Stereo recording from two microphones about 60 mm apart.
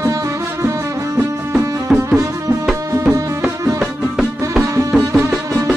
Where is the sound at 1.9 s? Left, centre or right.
Centre.